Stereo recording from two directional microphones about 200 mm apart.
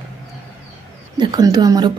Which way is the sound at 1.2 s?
20° right (ahead or behind).